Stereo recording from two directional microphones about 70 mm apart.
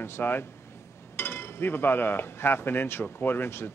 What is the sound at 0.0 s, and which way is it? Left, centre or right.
A man's voice, left.